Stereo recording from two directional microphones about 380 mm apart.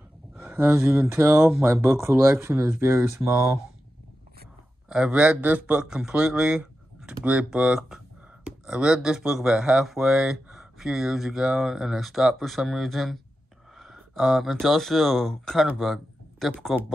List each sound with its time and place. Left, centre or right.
0.4 s speech: centre
4.8 s a man's voice: centre